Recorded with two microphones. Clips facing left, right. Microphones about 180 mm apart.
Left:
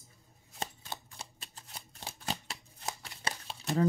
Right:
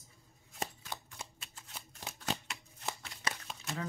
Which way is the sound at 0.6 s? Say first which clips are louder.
Left 1 dB; 30° left (ahead or behind).